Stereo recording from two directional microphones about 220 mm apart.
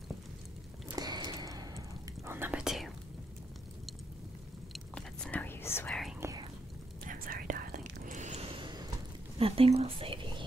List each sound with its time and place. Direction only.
0.8 s whispering: 20° right (ahead or behind); by 2.9 s centre (ahead or behind)
4.7 s whispering: 5° left (ahead or behind)
7.1 s whispering: 40° right (ahead or behind); by 8.8 s 20° right (ahead or behind)
9.4 s speech: 25° right (ahead or behind)